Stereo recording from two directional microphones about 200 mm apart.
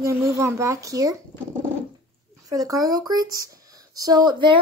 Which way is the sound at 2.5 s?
15° right (ahead or behind).